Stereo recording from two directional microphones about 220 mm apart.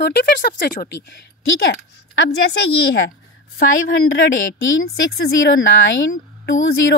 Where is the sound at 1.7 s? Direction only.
50° left (ahead or behind).